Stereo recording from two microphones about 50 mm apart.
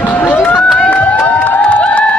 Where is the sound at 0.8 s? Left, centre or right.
Left.